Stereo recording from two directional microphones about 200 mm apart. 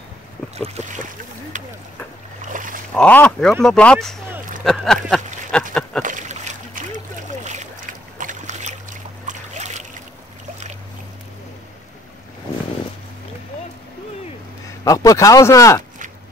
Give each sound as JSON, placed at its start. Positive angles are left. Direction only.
{"t": 0.6, "sound": "boat", "side_deg": -35}
{"t": 2.5, "sound": "speech", "side_deg": -40}
{"t": 2.9, "sound": "speech", "side_deg": 5}
{"t": 4.6, "sound": "a sound", "side_deg": 0}
{"t": 6.0, "sound": "splash", "side_deg": -35}
{"t": 8.2, "sound": "boat", "side_deg": -40}
{"t": 14.9, "sound": "speech", "side_deg": 15}